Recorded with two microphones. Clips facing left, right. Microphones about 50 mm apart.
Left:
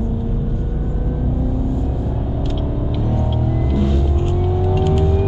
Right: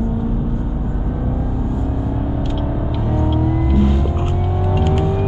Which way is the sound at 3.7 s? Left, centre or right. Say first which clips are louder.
Right 2 dB; centre.